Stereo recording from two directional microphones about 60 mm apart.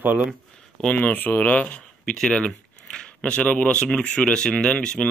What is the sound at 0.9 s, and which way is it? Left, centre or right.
Speech, left.